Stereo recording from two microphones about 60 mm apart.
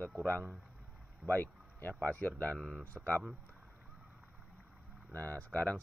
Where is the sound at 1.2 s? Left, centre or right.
Left.